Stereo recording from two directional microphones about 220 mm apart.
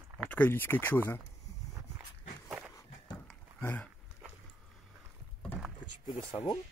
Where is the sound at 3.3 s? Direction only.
10° left (ahead or behind).